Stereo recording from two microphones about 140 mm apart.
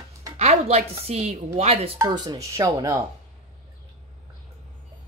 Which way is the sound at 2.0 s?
30° right (ahead or behind).